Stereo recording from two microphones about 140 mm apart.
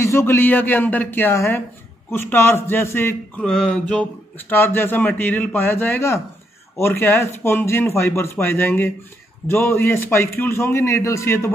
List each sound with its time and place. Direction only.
0.0 s speech: 20° left (ahead or behind)
3.4 s speech: 5° left (ahead or behind)